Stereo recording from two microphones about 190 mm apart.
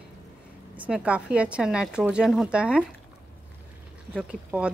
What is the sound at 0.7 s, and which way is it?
Speech, 5° right (ahead or behind).